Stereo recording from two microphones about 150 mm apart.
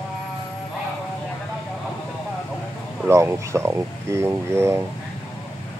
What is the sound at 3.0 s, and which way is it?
Speech, 15° right (ahead or behind).